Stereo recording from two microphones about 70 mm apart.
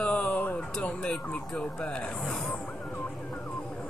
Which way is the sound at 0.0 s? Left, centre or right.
Centre.